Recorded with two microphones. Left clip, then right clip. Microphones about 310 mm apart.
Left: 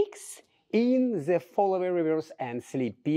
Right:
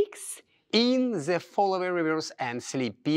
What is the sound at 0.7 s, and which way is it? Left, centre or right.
Speech, right.